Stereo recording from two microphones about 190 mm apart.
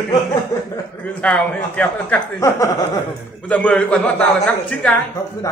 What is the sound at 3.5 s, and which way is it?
Speech, 5° left (ahead or behind).